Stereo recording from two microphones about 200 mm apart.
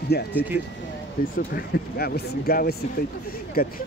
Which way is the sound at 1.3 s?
50° left (ahead or behind).